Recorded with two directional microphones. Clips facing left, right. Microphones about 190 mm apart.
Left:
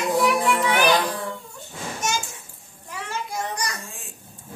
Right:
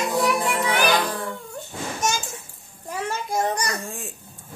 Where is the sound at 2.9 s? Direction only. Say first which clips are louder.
Right 5 dB; 45° right (ahead or behind).